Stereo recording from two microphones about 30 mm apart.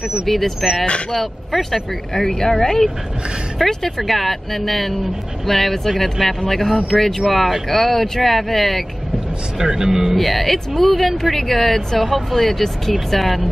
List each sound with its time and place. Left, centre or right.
0.6 s speech: centre
1.1 s speech: centre
2.1 s speech: centre
3.5 s speech: centre
7.2 s speech: centre
9.6 s speech: centre
10.1 s speech: centre